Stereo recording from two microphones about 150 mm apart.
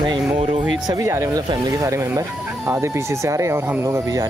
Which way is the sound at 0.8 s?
20° right (ahead or behind).